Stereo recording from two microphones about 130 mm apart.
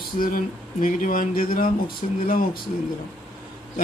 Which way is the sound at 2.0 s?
65° left (ahead or behind).